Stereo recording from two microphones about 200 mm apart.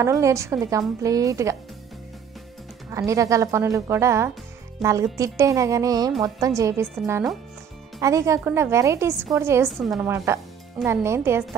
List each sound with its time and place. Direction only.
0.0 s a woman's voice: 15° right (ahead or behind)
2.9 s a woman's voice: 15° right (ahead or behind)
4.8 s speech: centre (ahead or behind)
5.1 s a woman's voice: 15° right (ahead or behind)
8.0 s a woman's voice: 15° right (ahead or behind)